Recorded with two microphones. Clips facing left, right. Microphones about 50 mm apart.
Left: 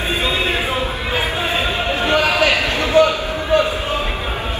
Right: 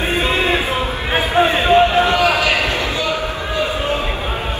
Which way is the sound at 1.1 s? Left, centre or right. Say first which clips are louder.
Right 7 dB; right.